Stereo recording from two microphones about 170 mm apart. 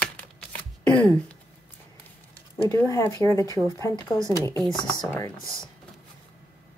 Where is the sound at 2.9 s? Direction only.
20° left (ahead or behind).